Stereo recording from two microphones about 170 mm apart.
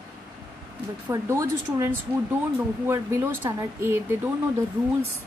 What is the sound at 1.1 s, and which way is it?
A woman's voice, 15° right (ahead or behind).